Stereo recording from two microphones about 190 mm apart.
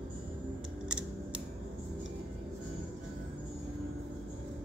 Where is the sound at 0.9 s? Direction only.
5° right (ahead or behind).